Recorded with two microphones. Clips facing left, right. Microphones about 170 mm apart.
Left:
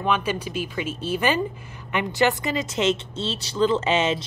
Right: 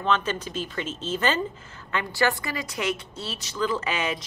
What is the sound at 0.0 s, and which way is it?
A woman's voice, 10° left (ahead or behind).